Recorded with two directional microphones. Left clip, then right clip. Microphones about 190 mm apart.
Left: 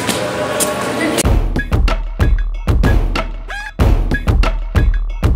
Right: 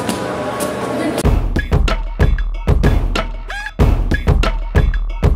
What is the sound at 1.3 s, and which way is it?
Music, centre (ahead or behind).